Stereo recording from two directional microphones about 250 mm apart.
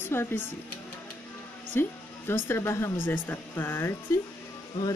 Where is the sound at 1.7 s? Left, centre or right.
Centre.